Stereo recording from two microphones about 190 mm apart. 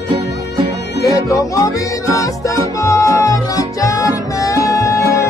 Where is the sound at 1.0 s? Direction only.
15° left (ahead or behind).